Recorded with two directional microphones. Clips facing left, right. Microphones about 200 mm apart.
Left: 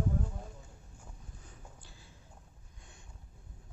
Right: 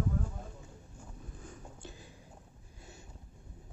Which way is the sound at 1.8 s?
15° right (ahead or behind).